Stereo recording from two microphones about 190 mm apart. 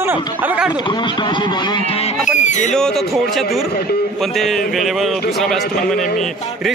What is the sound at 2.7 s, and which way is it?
A man's voice, centre (ahead or behind).